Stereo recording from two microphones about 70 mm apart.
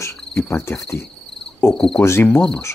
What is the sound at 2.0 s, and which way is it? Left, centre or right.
Cricket, left.